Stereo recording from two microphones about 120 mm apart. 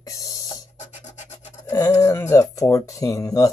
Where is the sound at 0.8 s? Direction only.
70° left (ahead or behind).